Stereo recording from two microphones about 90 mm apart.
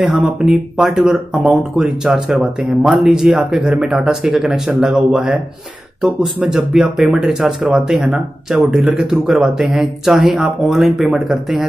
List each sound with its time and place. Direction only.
0.0 s speech: 5° right (ahead or behind)